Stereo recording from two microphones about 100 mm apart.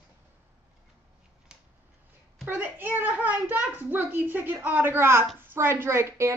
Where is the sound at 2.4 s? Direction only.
20° right (ahead or behind).